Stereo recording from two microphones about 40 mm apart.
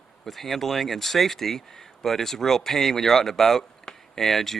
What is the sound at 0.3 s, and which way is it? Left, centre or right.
Speech, centre.